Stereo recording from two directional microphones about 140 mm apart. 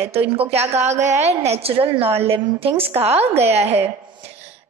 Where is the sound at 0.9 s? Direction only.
55° right (ahead or behind).